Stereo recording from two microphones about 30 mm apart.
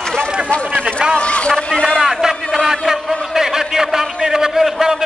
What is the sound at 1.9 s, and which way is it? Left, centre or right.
Speech, centre.